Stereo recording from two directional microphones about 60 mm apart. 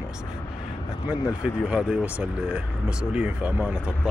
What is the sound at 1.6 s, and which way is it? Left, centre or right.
Speech, centre.